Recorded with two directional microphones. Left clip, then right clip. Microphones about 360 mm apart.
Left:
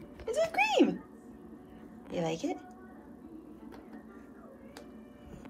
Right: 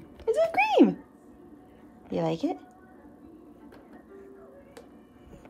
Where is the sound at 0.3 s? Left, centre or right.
Centre.